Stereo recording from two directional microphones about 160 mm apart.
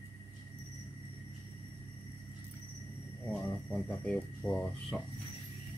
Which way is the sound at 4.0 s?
5° left (ahead or behind).